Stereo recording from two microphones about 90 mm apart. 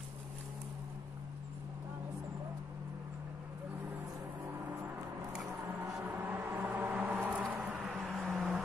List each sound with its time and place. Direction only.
6.0 s vehicle: 20° right (ahead or behind)
6.9 s a sound: 20° right (ahead or behind)
8.0 s vehicle: centre (ahead or behind)